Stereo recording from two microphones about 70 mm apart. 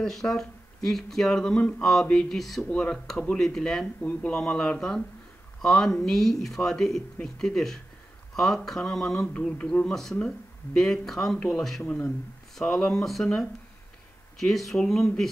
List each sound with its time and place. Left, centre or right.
0.0 s speech: centre
4.0 s speech: left
10.8 s speech: centre
11.8 s speech: centre
14.7 s speech: centre